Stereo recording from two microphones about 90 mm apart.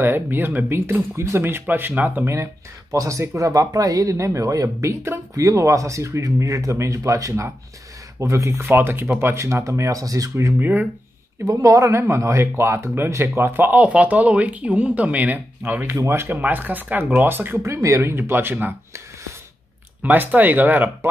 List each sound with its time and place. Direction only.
0.0 s speech: 25° right (ahead or behind)
2.2 s speech: 30° right (ahead or behind)
10.6 s speech: 20° right (ahead or behind)
11.4 s speech: 35° right (ahead or behind)
13.7 s speech: 15° right (ahead or behind)